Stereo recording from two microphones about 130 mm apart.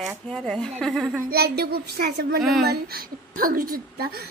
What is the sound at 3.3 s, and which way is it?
Speech, 90° right.